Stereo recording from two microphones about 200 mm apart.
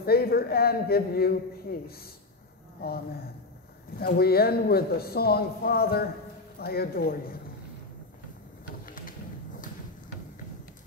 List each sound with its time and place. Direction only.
0.0 s speech: 50° left (ahead or behind)
4.0 s speech: 50° left (ahead or behind)
8.8 s a sound: 45° left (ahead or behind)